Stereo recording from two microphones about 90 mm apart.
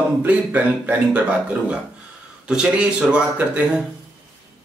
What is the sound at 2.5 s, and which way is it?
A man's voice, 10° right (ahead or behind).